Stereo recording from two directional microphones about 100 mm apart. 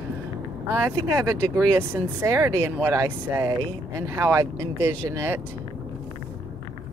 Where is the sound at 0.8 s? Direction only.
25° right (ahead or behind).